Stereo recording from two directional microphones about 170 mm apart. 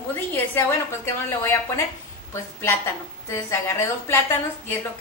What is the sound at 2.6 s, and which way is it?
A woman's voice, 15° left (ahead or behind).